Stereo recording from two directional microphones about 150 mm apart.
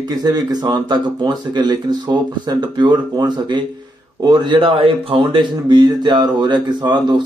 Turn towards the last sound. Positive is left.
turn(degrees=-30)  # may be behind; listen again after turning